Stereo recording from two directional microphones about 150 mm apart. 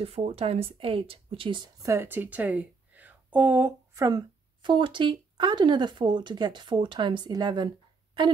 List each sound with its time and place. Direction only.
0.0 s speech: 40° right (ahead or behind)
1.8 s speech: 20° right (ahead or behind)